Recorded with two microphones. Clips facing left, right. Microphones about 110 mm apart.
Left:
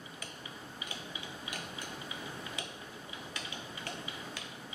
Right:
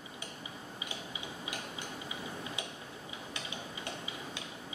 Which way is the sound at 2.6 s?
20° right (ahead or behind).